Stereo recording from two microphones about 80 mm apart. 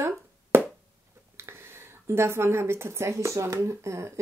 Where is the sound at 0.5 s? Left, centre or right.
Right.